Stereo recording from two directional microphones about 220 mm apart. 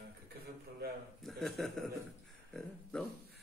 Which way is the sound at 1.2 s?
Centre (ahead or behind).